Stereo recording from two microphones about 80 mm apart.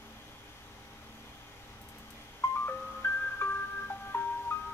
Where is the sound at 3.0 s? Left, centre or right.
Left.